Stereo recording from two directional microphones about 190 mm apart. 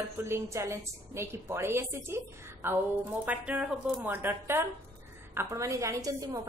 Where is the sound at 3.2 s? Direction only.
5° right (ahead or behind).